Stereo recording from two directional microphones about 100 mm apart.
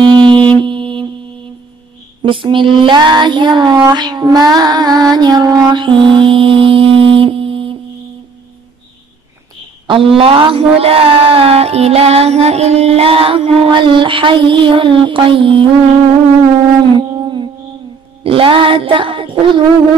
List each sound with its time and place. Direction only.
0.0 s music: 50° right (ahead or behind)
0.6 s mantra: 55° right (ahead or behind)
2.2 s child singing: 55° right (ahead or behind)
4.6 s music: 40° right (ahead or behind); by 7.7 s 65° right (ahead or behind)
9.8 s speech: 65° right (ahead or behind)
17.1 s humming: 55° right (ahead or behind)
18.2 s speech: 65° right (ahead or behind)